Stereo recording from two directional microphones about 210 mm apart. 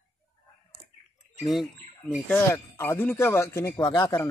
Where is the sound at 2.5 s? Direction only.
10° left (ahead or behind).